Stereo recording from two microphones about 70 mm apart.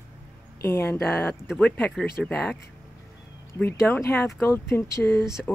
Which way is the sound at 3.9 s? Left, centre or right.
Left.